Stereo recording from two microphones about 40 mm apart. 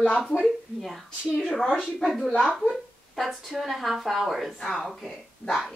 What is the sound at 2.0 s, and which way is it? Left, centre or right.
Speech, centre.